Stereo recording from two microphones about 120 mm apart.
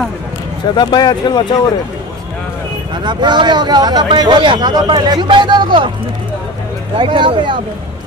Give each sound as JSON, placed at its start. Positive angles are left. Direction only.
{"t": 0.7, "sound": "speech", "side_deg": 35}
{"t": 3.0, "sound": "speech", "side_deg": -40}
{"t": 7.0, "sound": "speech", "side_deg": -45}